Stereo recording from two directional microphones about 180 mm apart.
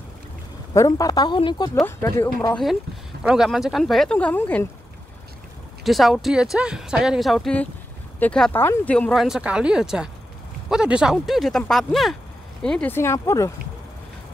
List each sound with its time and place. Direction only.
0.7 s speech: 20° left (ahead or behind)
3.3 s speech: centre (ahead or behind)
5.9 s speech: centre (ahead or behind); by 13.5 s 15° left (ahead or behind)